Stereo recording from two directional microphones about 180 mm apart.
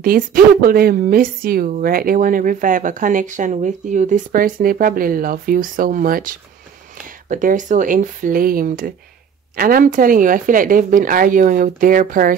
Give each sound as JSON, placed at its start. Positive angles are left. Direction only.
{"t": 0.0, "sound": "a woman's voice", "side_deg": -55}